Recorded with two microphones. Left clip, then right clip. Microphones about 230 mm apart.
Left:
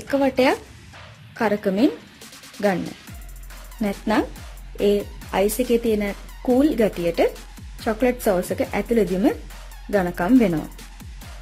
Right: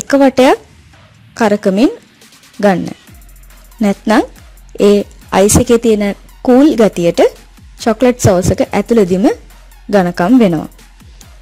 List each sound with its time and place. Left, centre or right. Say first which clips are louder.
0.1 s a woman's voice: right 11 dB; right
3.8 s a woman's voice: right 10 dB; right